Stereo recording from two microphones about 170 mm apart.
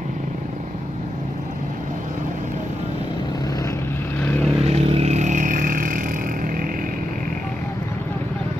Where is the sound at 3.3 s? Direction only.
20° left (ahead or behind).